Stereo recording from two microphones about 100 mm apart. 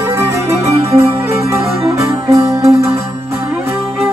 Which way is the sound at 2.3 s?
30° right (ahead or behind).